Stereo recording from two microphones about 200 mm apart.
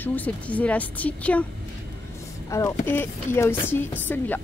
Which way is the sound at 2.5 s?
15° left (ahead or behind).